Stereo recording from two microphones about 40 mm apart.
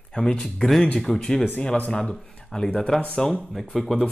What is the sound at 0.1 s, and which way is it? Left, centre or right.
Speech, centre.